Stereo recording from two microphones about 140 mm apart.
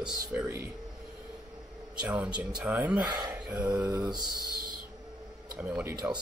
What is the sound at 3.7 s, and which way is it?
Speech, 25° right (ahead or behind).